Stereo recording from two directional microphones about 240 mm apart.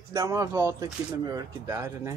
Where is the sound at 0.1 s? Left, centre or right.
Centre.